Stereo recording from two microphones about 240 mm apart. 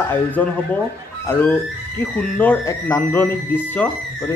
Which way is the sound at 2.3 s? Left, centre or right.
Centre.